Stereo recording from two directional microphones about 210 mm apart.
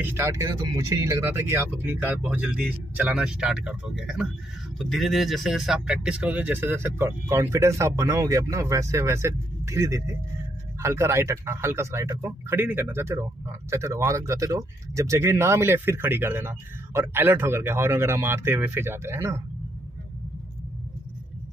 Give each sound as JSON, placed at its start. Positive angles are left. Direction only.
{"t": 0.0, "sound": "a man's voice", "side_deg": -10}